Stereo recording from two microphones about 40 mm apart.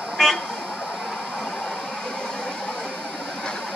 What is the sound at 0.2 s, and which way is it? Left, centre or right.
Vehicle, centre.